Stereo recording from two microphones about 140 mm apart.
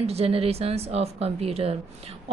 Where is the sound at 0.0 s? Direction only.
45° right (ahead or behind).